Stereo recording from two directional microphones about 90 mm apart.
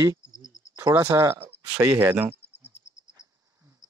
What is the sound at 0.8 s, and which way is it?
Speech, 40° right (ahead or behind).